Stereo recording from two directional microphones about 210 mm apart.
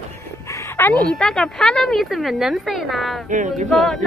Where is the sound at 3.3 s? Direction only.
35° right (ahead or behind).